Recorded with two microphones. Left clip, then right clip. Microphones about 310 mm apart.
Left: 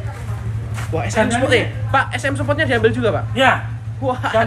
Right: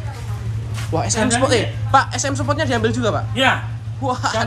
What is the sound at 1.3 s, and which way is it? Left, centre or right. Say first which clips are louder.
A man's voice: left 1 dB; centre.